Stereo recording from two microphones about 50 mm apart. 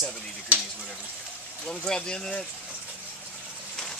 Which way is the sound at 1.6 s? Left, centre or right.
Centre.